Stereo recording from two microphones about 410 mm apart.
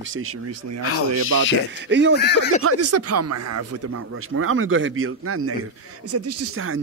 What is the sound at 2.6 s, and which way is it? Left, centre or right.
A man's voice, right.